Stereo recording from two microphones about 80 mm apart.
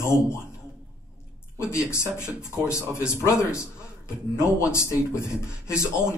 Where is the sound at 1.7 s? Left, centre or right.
Left.